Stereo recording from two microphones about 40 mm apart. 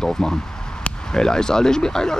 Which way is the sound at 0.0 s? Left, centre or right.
Centre.